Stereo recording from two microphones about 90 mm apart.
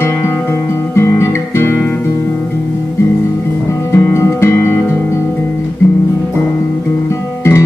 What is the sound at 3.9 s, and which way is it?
Music, 30° left (ahead or behind).